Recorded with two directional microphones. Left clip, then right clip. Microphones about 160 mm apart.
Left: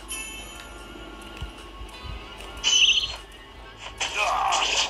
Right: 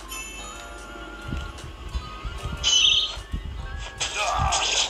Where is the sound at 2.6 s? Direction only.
5° right (ahead or behind).